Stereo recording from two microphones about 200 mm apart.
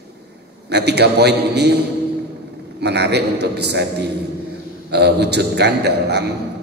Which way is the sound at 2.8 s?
55° right (ahead or behind).